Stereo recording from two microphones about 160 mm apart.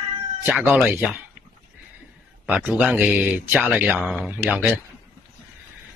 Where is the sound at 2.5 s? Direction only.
10° right (ahead or behind).